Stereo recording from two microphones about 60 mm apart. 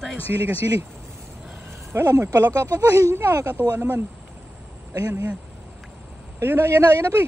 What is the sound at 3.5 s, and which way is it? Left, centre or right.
Speech, right.